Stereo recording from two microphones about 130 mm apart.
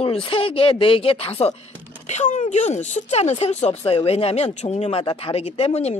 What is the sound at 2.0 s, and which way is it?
Speech, 65° left (ahead or behind).